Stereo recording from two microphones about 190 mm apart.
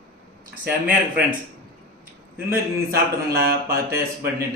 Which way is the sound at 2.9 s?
55° right (ahead or behind).